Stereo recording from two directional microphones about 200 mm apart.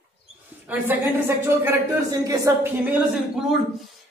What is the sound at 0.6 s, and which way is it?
A woman's voice, 10° right (ahead or behind).